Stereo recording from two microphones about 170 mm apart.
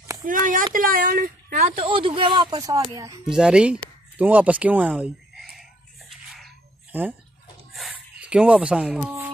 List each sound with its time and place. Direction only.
0.2 s a sound: 50° right (ahead or behind)
0.7 s speech: 55° right (ahead or behind)
1.9 s speech: 30° right (ahead or behind)
3.3 s speech: 5° right (ahead or behind)
6.9 s speech: 10° right (ahead or behind)
7.7 s a sound: 5° right (ahead or behind)